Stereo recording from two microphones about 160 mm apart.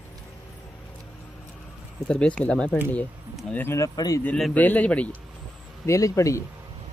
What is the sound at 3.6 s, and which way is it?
Speech, 15° left (ahead or behind).